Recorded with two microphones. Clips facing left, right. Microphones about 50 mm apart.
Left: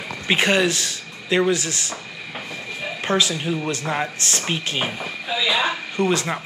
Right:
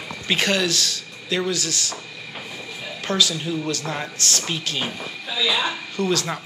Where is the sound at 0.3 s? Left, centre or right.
Left.